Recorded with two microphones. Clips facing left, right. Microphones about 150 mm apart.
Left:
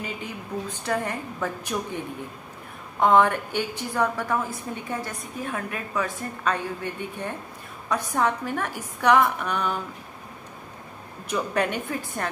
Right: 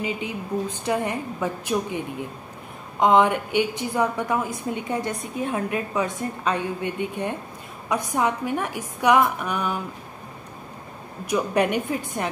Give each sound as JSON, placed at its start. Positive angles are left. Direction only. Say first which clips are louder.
{"t": 0.0, "sound": "a woman's voice", "louder": "right 5 dB", "side_deg": -15}
{"t": 3.0, "sound": "a woman's voice", "louder": "right 1 dB", "side_deg": -15}
{"t": 11.2, "sound": "a woman's voice", "louder": "right 4 dB", "side_deg": -10}